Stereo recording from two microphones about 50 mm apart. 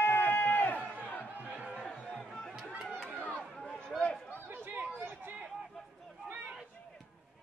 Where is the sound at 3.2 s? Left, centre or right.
Left.